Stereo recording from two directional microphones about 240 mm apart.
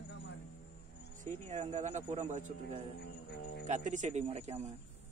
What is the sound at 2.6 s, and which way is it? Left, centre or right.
Speech, left.